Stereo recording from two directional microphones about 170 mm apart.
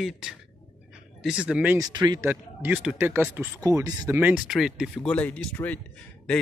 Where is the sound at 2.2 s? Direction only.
10° right (ahead or behind).